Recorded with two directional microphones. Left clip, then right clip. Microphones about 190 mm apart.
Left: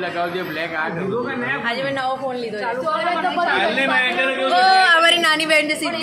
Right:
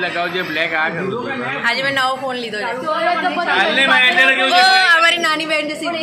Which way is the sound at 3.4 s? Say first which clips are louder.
Right 5 dB; 30° right (ahead or behind).